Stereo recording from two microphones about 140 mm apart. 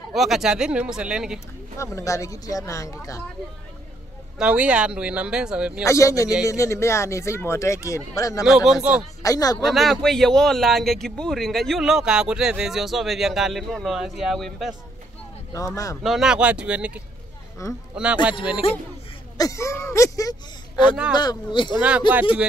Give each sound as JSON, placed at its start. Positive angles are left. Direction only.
{"t": 0.1, "sound": "speech", "side_deg": 0}
{"t": 1.8, "sound": "speech", "side_deg": 20}
{"t": 4.4, "sound": "speech", "side_deg": -10}
{"t": 5.9, "sound": "speech", "side_deg": 20}
{"t": 8.5, "sound": "speech", "side_deg": -5}
{"t": 9.2, "sound": "speech", "side_deg": 25}
{"t": 9.7, "sound": "speech", "side_deg": 0}
{"t": 15.5, "sound": "speech", "side_deg": 25}
{"t": 16.0, "sound": "speech", "side_deg": 0}
{"t": 17.6, "sound": "speech", "side_deg": 20}
{"t": 18.6, "sound": "speech", "side_deg": 45}
{"t": 19.3, "sound": "speech", "side_deg": 25}